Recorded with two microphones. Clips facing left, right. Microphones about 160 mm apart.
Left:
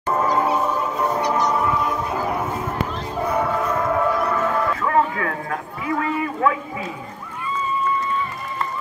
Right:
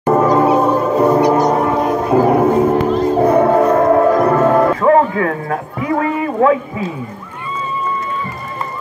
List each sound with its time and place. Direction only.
0.1 s music: 55° right (ahead or behind)
1.3 s music: 50° right (ahead or behind)
2.9 s music: 50° right (ahead or behind)